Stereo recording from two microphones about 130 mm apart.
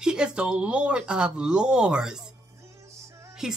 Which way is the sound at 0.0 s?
5° right (ahead or behind).